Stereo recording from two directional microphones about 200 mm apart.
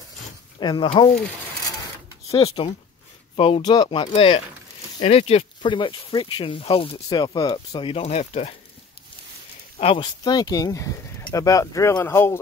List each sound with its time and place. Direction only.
0.6 s speech: 20° left (ahead or behind)
2.3 s speech: 25° left (ahead or behind)
9.8 s speech: 25° left (ahead or behind)